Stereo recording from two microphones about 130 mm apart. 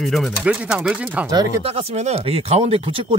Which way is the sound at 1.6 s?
55° right (ahead or behind).